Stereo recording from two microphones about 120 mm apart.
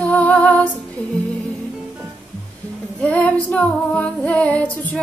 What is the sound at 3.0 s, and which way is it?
Female singing, 10° left (ahead or behind).